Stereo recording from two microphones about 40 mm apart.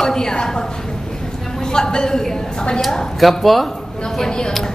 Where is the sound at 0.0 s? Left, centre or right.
Centre.